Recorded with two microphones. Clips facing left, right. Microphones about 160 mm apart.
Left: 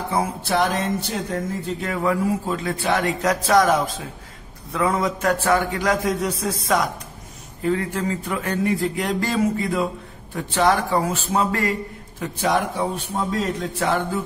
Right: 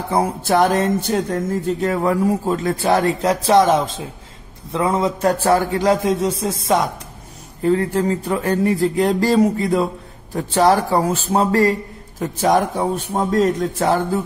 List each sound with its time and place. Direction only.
0.1 s speech: 40° right (ahead or behind)
1.8 s a man's voice: 40° right (ahead or behind)